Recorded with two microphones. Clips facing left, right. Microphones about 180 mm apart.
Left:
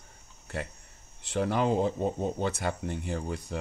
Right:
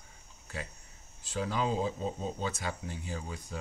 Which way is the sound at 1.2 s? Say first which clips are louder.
Left 5 dB; 60° left (ahead or behind).